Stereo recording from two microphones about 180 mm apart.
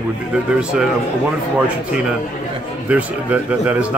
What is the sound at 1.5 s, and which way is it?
Speech, 5° right (ahead or behind).